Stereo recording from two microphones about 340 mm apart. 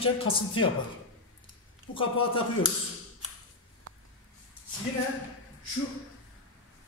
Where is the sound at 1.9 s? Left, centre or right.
Centre.